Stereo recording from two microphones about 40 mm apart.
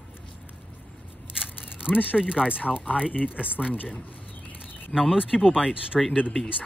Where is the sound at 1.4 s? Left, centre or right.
Right.